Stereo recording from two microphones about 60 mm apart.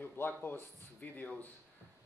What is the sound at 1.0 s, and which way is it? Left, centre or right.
Speech, left.